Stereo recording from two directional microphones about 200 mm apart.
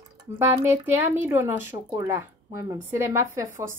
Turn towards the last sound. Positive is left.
turn(degrees=-15)  # may be behind; listen again after turning